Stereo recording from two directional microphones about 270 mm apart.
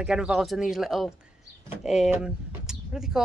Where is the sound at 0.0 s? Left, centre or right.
Centre.